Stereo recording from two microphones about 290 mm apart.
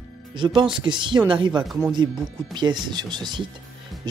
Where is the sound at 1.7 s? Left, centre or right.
Centre.